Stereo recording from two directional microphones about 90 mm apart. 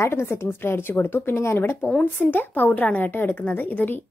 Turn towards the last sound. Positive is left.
turn(degrees=20)  # may be behind; listen again after turning